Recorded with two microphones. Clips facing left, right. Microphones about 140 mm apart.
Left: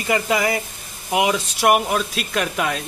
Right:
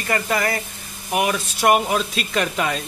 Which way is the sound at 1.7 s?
Centre (ahead or behind).